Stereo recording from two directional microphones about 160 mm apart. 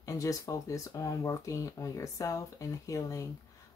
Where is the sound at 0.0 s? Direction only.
20° left (ahead or behind).